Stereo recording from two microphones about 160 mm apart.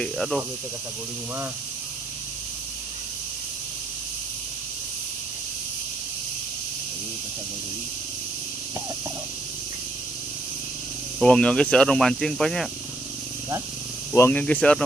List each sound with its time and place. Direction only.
0.0 s speech: centre (ahead or behind)
11.1 s speech: 5° left (ahead or behind)
14.1 s speech: 15° left (ahead or behind)